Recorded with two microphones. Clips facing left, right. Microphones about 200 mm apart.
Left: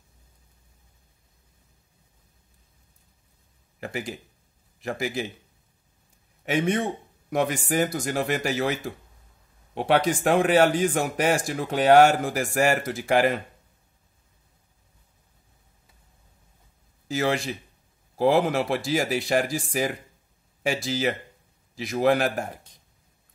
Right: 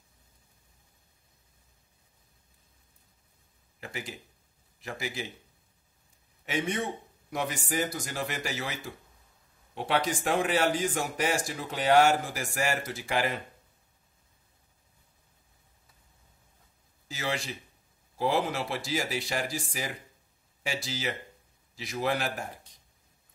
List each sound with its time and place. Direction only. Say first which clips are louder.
3.8 s speech: left 7 dB; 50° left (ahead or behind)
6.4 s speech: left 7 dB; 55° left (ahead or behind)
17.1 s speech: left 9 dB; 55° left (ahead or behind)